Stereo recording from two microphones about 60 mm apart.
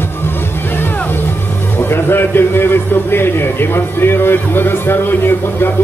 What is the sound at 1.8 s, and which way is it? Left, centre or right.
A man's voice, left.